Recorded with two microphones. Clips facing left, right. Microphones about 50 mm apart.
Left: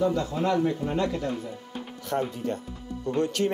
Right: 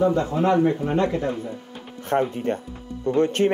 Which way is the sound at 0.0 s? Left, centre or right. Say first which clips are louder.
Right 5 dB; right.